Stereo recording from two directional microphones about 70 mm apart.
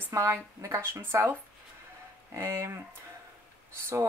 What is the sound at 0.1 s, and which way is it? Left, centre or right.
Speech, right.